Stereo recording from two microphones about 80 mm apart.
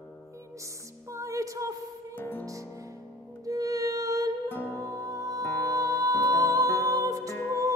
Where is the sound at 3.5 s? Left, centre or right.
Right.